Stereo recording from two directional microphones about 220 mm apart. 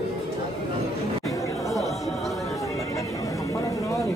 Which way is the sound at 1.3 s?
15° left (ahead or behind).